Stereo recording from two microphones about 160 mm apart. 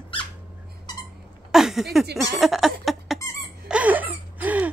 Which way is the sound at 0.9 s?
25° left (ahead or behind).